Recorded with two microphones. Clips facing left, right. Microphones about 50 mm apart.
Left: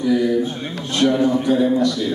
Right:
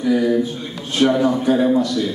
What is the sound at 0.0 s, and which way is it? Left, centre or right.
Speech, right.